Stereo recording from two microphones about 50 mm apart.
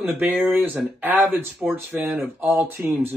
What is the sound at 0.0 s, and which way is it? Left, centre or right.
Speech, right.